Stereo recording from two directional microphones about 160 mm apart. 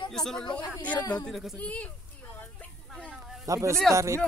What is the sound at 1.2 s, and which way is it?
Speech, centre (ahead or behind).